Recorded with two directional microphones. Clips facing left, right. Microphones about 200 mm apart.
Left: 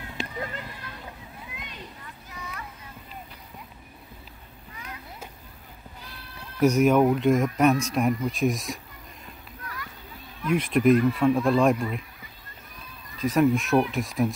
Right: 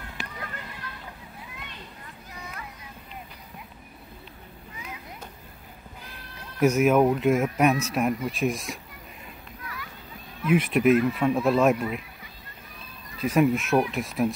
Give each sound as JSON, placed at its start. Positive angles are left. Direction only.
{"t": 0.2, "sound": "a sound", "side_deg": 25}
{"t": 6.6, "sound": "speech", "side_deg": -5}
{"t": 10.4, "sound": "speech", "side_deg": -5}
{"t": 13.2, "sound": "speech", "side_deg": -10}